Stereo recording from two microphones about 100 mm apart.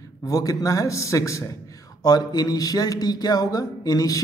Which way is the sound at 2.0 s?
40° left (ahead or behind).